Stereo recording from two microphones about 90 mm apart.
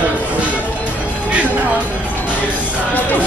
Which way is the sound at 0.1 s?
15° right (ahead or behind).